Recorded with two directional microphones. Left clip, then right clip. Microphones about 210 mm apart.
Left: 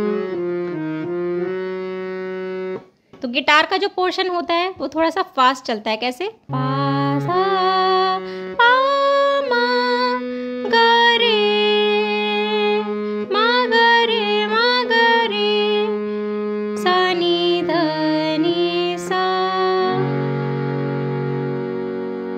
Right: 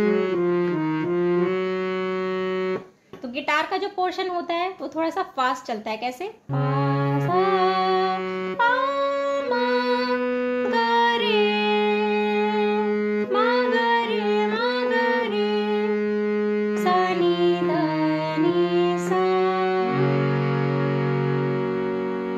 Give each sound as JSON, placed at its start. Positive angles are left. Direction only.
{"t": 3.4, "sound": "a woman's voice", "side_deg": 35}
{"t": 6.8, "sound": "music", "side_deg": 35}
{"t": 13.3, "sound": "music", "side_deg": 40}
{"t": 16.8, "sound": "music", "side_deg": 35}